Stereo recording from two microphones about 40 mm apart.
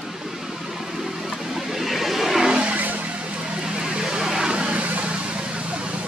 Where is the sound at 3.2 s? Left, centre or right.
Right.